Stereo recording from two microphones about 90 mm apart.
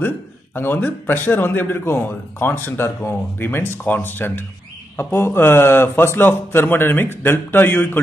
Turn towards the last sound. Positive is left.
turn(degrees=20)  # may be behind; listen again after turning